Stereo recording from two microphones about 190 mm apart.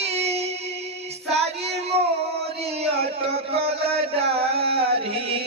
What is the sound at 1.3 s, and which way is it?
Child singing, 35° right (ahead or behind).